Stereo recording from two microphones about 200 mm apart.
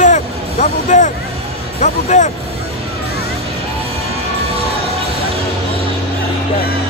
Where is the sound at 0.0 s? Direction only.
40° left (ahead or behind).